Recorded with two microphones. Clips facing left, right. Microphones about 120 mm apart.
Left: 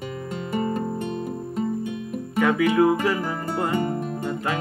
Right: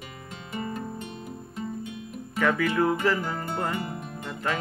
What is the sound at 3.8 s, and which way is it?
Music, 40° left (ahead or behind).